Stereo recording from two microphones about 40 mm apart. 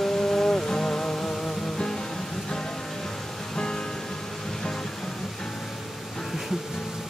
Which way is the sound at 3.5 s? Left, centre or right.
Centre.